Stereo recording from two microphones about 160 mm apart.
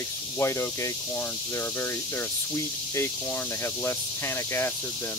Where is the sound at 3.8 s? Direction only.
15° left (ahead or behind).